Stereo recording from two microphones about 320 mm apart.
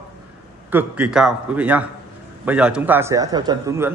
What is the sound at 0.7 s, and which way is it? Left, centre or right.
A man's voice, centre.